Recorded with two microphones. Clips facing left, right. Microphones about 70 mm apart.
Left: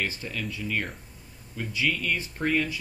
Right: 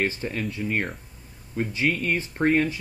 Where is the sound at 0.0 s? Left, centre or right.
Right.